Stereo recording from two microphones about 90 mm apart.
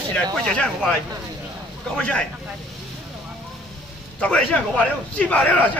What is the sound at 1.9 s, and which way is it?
Speech, 10° left (ahead or behind).